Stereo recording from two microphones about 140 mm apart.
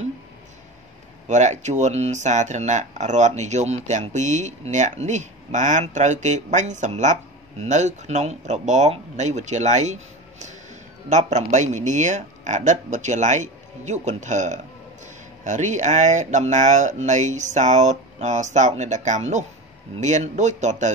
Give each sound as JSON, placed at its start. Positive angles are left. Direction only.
{"t": 1.2, "sound": "speech", "side_deg": -60}
{"t": 11.1, "sound": "speech", "side_deg": -55}